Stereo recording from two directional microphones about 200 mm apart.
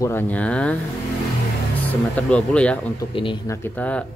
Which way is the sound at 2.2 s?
5° left (ahead or behind).